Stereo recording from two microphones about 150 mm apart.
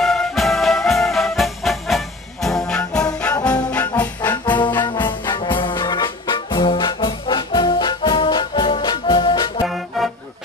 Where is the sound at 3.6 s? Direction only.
10° left (ahead or behind).